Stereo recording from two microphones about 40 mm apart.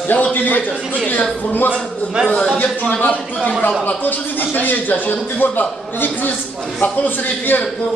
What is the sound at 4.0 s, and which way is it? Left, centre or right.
A man's voice, left.